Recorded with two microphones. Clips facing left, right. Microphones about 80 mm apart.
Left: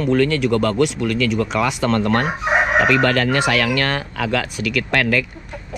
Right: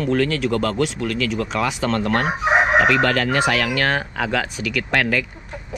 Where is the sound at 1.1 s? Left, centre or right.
Left.